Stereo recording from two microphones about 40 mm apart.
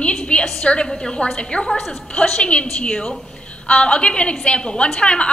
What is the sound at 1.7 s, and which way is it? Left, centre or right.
Speech, centre.